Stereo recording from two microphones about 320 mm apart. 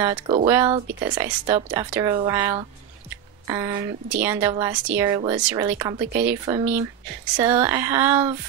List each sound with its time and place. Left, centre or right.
0.0 s a woman's voice: centre